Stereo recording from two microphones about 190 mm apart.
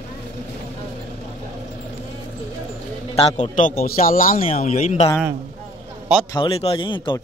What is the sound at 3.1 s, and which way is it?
Speech, 35° left (ahead or behind).